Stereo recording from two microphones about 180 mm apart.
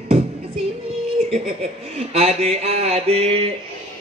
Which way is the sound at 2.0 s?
35° right (ahead or behind).